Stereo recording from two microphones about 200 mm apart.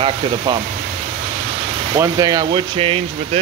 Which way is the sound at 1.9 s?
15° right (ahead or behind).